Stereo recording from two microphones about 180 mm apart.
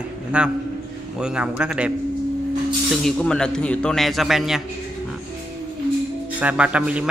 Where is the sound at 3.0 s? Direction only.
5° left (ahead or behind).